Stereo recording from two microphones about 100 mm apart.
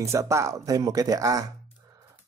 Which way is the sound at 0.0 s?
30° right (ahead or behind).